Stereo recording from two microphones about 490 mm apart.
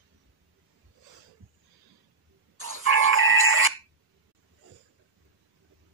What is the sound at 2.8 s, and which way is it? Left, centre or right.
Music, right.